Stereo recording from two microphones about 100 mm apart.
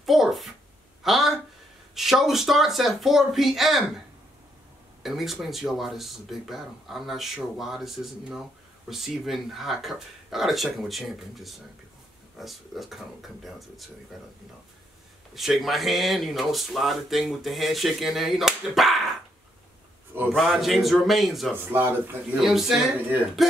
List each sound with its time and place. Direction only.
0.0 s a child's voice: centre (ahead or behind)
5.0 s speech: 5° right (ahead or behind)
15.3 s speech: centre (ahead or behind)
20.3 s speech: centre (ahead or behind)
21.7 s speech: 20° right (ahead or behind)
22.4 s speech: 5° right (ahead or behind)